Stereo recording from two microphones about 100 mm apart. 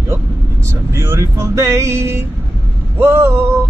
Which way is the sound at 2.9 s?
25° right (ahead or behind).